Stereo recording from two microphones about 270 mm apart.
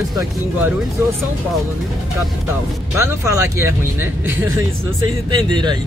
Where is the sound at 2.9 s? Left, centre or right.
Centre.